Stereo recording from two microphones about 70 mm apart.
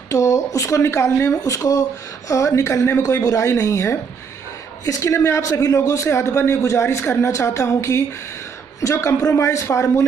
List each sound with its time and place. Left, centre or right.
0.1 s speech: left
1.4 s speech: left